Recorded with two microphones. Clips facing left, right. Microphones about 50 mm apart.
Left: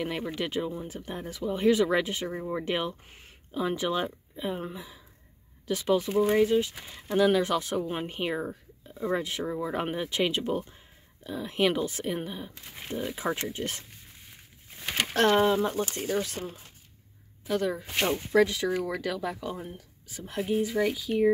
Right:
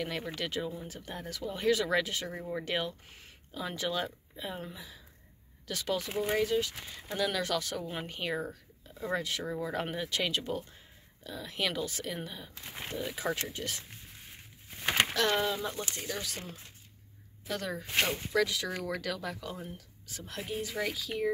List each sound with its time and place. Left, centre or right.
0.0 s speech: centre
15.1 s speech: left
17.5 s speech: centre
18.0 s speech: left
18.7 s speech: centre